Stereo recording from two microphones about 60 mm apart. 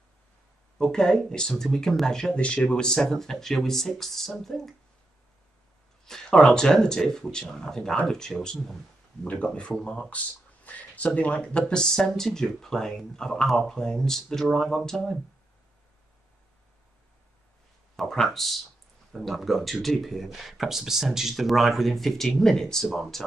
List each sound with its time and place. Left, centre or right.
0.7 s speech: centre
6.0 s speech: centre
17.9 s speech: centre